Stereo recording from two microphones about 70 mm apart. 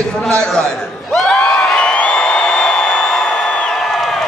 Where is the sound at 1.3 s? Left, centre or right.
Centre.